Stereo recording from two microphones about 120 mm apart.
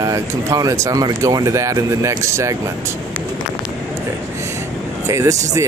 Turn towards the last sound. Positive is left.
turn(degrees=-25)  # may be behind; listen again after turning